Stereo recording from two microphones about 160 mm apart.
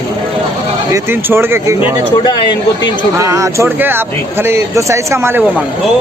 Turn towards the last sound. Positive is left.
turn(degrees=-15)  # may be behind; listen again after turning